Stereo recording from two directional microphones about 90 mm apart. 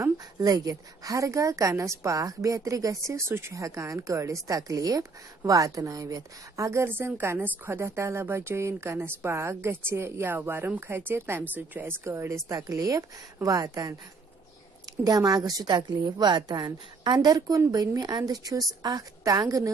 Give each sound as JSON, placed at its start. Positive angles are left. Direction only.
{"t": 0.4, "sound": "a woman's voice", "side_deg": -45}
{"t": 15.0, "sound": "a woman's voice", "side_deg": -45}